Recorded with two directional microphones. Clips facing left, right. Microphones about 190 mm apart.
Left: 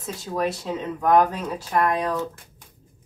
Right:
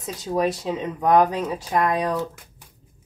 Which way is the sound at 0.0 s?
15° right (ahead or behind).